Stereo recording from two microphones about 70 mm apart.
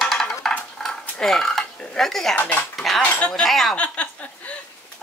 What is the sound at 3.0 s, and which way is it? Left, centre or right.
Speech, left.